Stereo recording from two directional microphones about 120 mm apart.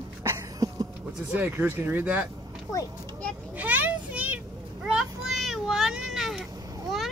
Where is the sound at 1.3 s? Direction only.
15° right (ahead or behind).